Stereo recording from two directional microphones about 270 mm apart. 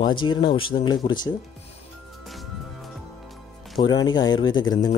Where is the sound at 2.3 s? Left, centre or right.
Centre.